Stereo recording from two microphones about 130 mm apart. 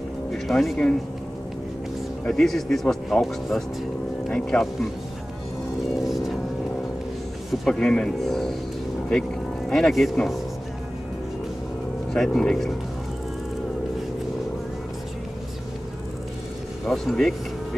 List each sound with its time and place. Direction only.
0.3 s speech: centre (ahead or behind)
2.2 s speech: 5° left (ahead or behind)
6.0 s music: centre (ahead or behind)
7.6 s speech: 5° left (ahead or behind)
9.7 s speech: centre (ahead or behind)
12.1 s speech: 5° left (ahead or behind)
16.8 s speech: centre (ahead or behind)